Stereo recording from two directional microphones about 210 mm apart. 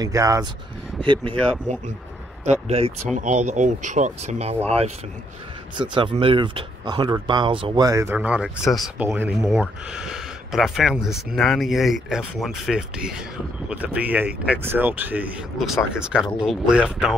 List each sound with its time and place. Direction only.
0.0 s speech: 15° right (ahead or behind)
2.4 s speech: 30° right (ahead or behind); by 17.1 s 5° right (ahead or behind)